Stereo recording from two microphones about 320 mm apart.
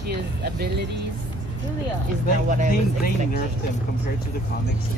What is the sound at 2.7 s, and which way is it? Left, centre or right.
Speech, left.